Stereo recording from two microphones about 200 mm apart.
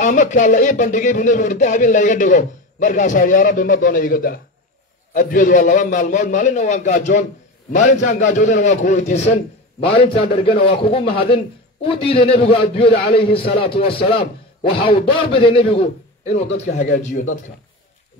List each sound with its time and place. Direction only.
0.0 s a man's voice: 40° left (ahead or behind)